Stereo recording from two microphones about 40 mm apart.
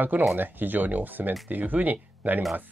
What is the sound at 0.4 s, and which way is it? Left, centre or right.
Speech, right.